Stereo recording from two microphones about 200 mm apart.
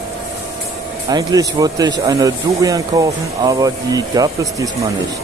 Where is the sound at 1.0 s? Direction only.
20° right (ahead or behind).